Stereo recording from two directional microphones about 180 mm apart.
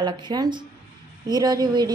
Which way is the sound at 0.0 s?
25° right (ahead or behind).